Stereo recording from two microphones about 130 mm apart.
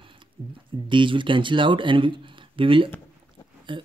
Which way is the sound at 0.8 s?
40° right (ahead or behind).